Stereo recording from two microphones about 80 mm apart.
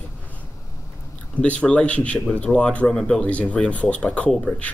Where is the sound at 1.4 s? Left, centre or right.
Centre.